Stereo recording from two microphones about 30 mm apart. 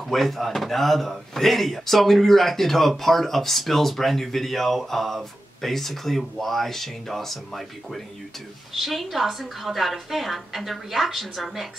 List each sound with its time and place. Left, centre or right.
0.1 s a woman's voice: centre